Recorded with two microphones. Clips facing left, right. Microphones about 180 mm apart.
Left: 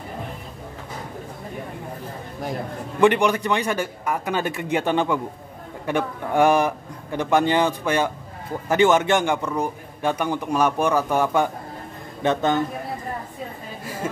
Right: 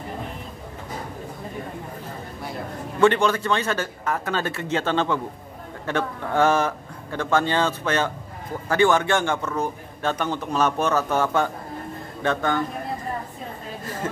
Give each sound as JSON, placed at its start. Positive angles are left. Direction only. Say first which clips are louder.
{"t": 3.0, "sound": "a man's voice", "louder": "left 1 dB", "side_deg": 15}
{"t": 13.8, "sound": "a man's voice", "louder": "left 1 dB", "side_deg": 10}